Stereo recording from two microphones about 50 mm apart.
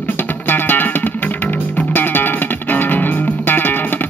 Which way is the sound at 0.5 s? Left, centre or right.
Left.